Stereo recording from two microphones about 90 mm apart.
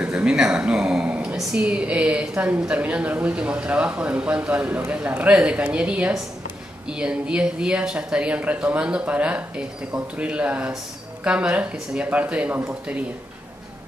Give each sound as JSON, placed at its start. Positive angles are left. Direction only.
{"t": 0.0, "sound": "speech", "side_deg": -10}